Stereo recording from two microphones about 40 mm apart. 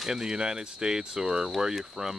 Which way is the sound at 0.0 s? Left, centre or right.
Centre.